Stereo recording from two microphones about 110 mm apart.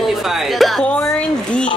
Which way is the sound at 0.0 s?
Centre (ahead or behind).